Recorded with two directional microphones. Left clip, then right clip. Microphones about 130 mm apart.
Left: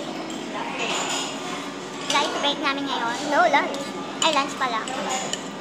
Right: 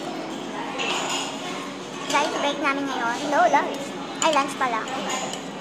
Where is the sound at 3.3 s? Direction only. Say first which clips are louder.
Even; 25° left (ahead or behind).